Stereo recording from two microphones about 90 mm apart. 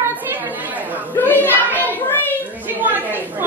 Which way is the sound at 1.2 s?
20° left (ahead or behind).